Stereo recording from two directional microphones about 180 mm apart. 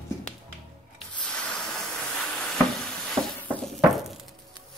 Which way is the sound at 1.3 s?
Centre (ahead or behind).